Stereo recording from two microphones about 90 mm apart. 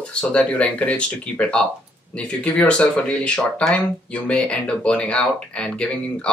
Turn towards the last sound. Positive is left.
turn(degrees=10)  # may be behind; listen again after turning